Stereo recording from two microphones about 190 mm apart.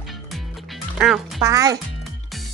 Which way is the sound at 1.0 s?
Centre (ahead or behind).